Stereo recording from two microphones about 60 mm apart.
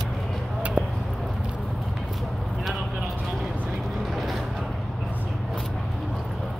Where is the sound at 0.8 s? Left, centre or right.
Right.